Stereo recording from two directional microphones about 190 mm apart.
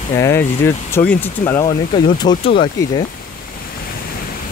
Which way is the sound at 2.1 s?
25° left (ahead or behind).